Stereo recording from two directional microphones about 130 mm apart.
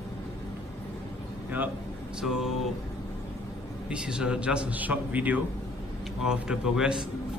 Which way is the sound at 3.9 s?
5° right (ahead or behind).